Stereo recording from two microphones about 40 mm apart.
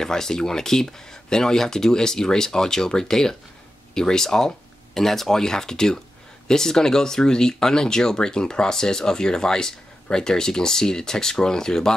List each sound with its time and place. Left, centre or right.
0.0 s speech: centre